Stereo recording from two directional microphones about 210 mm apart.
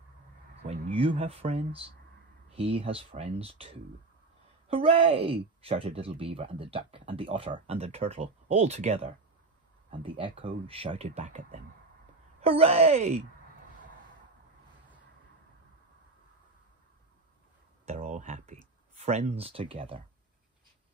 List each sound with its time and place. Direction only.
0.7 s speech: 25° right (ahead or behind)
17.8 s a sound: 35° right (ahead or behind)
18.9 s speech: 30° right (ahead or behind)